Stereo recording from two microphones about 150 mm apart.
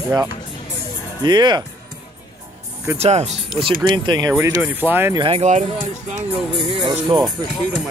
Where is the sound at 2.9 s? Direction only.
45° right (ahead or behind).